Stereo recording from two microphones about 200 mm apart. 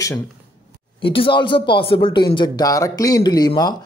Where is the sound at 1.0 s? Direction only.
25° left (ahead or behind).